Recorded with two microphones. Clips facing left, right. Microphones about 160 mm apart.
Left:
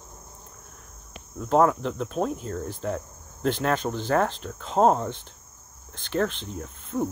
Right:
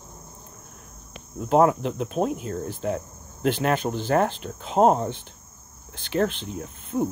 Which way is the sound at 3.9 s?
15° right (ahead or behind).